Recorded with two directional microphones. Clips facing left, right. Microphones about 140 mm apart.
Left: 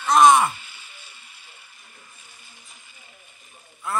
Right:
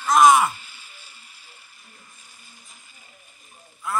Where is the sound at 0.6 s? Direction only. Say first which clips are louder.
Left 1 dB; 40° right (ahead or behind).